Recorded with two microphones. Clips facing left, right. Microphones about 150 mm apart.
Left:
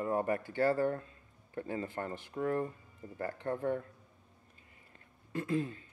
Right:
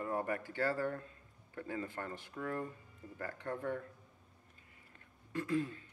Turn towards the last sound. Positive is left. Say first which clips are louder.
# left 2 dB
turn(degrees=25)  # may be behind; listen again after turning